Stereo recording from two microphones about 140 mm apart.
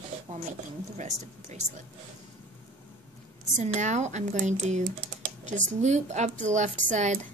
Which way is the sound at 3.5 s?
60° right (ahead or behind).